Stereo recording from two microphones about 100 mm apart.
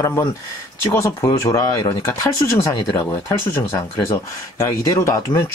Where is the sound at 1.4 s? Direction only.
40° left (ahead or behind).